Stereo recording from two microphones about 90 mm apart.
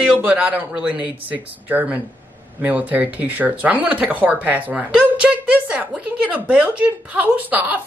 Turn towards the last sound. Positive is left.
turn(degrees=-20)  # may be behind; listen again after turning